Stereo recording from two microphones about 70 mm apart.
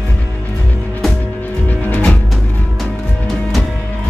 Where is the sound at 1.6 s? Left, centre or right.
Left.